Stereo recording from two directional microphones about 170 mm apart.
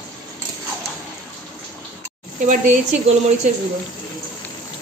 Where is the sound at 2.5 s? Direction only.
45° right (ahead or behind).